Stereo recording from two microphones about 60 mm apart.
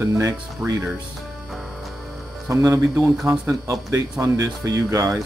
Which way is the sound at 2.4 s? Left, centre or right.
Right.